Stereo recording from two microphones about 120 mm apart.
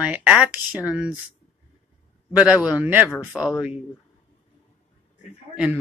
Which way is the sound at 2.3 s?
10° right (ahead or behind).